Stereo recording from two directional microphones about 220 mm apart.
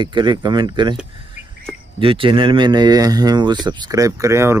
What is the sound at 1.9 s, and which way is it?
Speech, 25° right (ahead or behind).